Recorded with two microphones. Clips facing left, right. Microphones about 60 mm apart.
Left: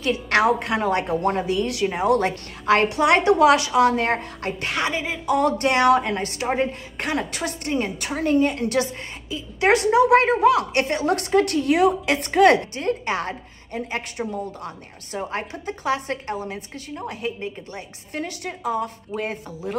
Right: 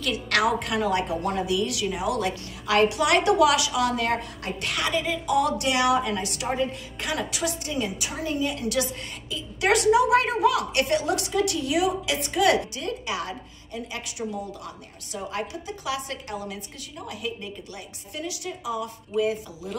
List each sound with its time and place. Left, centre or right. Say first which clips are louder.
0.0 s a woman's voice: left 4 dB; left